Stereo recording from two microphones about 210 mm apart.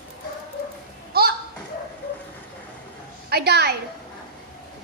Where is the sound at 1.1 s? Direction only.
50° right (ahead or behind).